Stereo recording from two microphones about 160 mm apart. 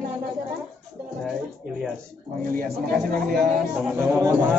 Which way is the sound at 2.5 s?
65° right (ahead or behind).